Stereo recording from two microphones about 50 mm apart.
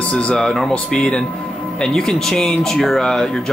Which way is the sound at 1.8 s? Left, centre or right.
Centre.